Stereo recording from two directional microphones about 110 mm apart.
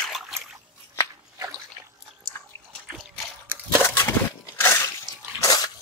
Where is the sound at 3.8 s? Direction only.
25° left (ahead or behind).